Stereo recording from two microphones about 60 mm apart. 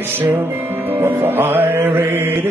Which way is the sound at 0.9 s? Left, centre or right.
Right.